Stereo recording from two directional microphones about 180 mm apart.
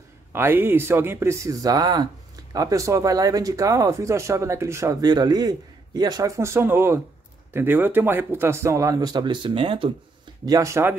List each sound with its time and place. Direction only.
0.3 s speech: 10° right (ahead or behind); by 9.9 s 30° right (ahead or behind)
10.4 s speech: 20° right (ahead or behind)